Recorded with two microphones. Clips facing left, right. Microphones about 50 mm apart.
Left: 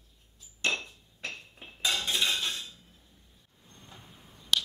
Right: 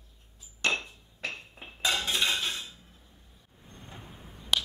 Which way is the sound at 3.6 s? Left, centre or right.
Right.